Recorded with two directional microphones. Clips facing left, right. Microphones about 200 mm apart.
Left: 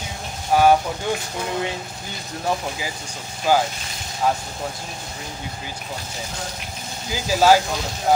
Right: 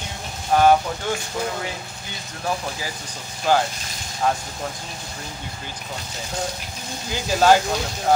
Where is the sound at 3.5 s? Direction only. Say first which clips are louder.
Left 1 dB; 10° left (ahead or behind).